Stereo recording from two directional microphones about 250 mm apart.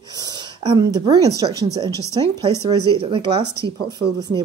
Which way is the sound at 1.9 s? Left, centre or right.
Centre.